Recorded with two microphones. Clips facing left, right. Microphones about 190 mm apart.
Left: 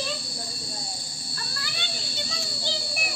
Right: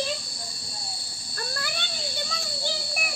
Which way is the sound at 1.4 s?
50° right (ahead or behind).